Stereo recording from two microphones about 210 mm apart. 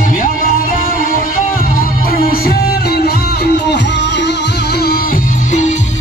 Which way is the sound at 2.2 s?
45° left (ahead or behind).